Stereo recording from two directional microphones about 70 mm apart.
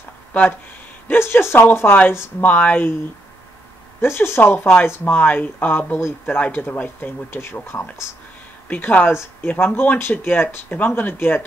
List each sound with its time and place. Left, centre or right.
0.3 s speech: left
1.0 s speech: left
4.0 s speech: left